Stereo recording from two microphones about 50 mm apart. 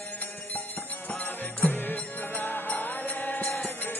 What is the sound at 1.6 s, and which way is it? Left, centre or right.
Music, left.